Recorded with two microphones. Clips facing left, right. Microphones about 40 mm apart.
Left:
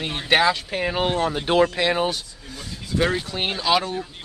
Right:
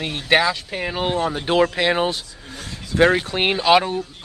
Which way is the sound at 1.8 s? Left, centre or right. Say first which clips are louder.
Right 2 dB; right.